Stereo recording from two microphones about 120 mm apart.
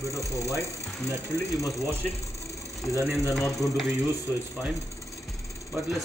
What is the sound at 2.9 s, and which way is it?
Speech, 25° right (ahead or behind).